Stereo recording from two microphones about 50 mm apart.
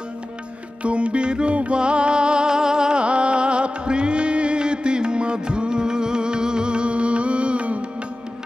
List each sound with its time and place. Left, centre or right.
0.8 s music: right